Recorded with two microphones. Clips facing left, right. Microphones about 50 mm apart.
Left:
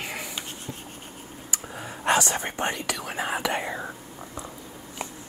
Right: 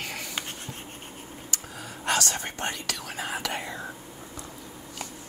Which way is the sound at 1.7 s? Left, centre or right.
Left.